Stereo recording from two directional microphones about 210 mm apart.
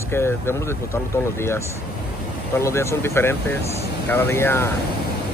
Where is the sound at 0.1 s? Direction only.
10° left (ahead or behind).